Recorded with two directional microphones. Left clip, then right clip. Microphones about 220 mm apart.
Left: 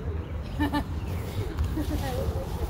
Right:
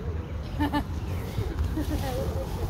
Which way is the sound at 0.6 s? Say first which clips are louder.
Even; 20° left (ahead or behind).